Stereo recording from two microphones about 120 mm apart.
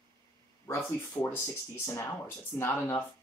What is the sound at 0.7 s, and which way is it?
Speech, 25° left (ahead or behind).